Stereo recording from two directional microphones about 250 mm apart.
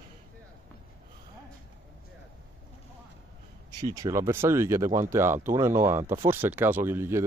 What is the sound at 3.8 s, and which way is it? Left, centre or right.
Speech, centre.